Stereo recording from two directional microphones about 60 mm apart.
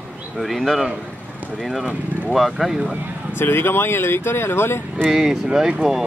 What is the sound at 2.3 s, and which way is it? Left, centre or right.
Speech, centre.